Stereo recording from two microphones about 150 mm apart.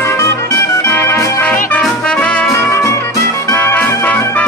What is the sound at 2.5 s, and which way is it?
Music, 20° left (ahead or behind).